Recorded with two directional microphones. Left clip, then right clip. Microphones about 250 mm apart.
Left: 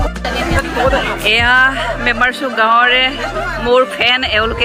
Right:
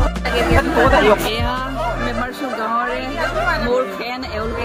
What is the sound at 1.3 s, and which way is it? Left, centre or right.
Speech, centre.